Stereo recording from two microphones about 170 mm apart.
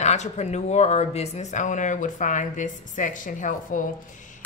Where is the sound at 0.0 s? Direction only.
40° left (ahead or behind).